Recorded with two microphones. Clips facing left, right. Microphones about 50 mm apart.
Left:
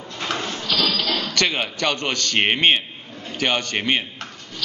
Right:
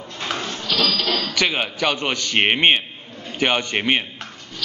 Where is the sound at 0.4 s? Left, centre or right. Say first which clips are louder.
Even; centre.